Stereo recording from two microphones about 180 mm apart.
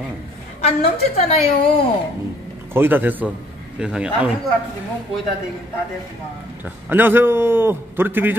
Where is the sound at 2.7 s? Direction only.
10° right (ahead or behind).